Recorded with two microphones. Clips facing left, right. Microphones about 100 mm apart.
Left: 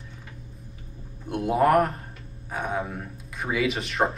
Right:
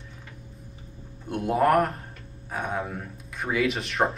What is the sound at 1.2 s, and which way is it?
Speech, centre (ahead or behind).